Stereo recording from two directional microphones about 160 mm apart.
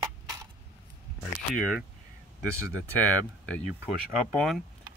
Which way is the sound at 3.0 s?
10° left (ahead or behind).